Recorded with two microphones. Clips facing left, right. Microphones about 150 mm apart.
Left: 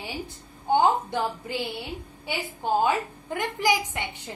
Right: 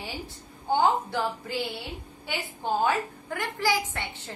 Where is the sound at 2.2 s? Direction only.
10° left (ahead or behind).